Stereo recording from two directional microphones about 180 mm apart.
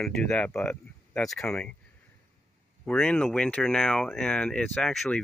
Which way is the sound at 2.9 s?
5° left (ahead or behind).